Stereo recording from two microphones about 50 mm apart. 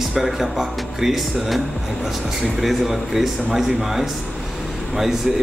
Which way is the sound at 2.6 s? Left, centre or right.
Centre.